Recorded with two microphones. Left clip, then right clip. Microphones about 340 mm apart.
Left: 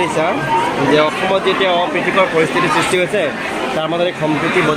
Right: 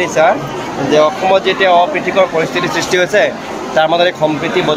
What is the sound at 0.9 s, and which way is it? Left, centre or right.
Speech, right.